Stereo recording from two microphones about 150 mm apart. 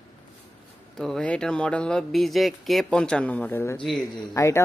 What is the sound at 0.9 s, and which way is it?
Speech, centre (ahead or behind).